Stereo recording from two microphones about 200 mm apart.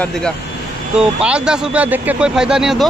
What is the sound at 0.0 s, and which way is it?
Speech, 5° left (ahead or behind).